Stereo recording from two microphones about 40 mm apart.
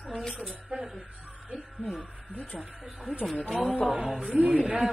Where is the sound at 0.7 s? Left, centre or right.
Centre.